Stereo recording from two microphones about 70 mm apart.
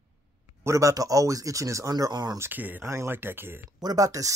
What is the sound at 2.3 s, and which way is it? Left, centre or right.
Speech, right.